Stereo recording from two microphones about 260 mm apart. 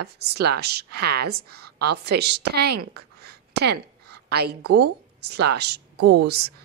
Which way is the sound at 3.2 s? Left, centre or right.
Right.